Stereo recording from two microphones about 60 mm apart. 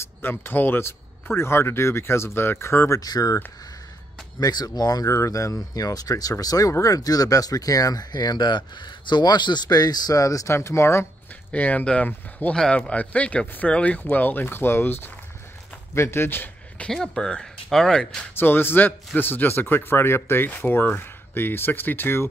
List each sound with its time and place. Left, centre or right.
0.2 s speech: left
3.0 s speech: left
4.4 s speech: left
5.1 s speech: left
6.8 s speech: left
9.7 s speech: left
11.5 s speech: left
12.5 s speech: centre
12.8 s speech: left
16.9 s speech: centre
18.3 s speech: left